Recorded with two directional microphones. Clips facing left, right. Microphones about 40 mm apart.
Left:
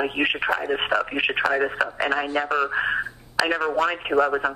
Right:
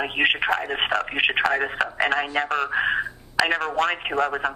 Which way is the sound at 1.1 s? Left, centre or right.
Right.